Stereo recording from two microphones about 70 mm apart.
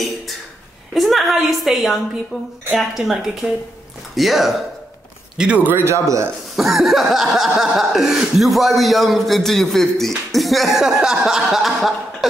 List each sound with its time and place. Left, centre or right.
0.9 s speech: centre
5.4 s a man's voice: right
6.5 s speech: centre